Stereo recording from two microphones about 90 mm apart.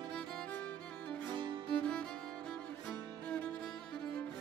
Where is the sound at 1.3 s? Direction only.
60° right (ahead or behind).